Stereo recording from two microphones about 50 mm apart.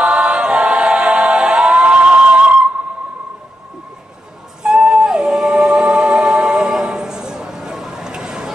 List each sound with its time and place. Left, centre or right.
0.0 s a capella: centre
4.6 s music: centre